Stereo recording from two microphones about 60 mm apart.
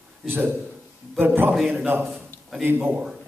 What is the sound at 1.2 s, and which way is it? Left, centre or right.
Speech, right.